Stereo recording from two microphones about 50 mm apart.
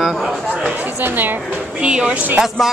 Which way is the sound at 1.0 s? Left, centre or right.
Right.